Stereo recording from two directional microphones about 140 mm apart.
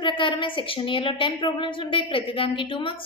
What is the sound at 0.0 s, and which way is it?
A woman's voice, 35° left (ahead or behind).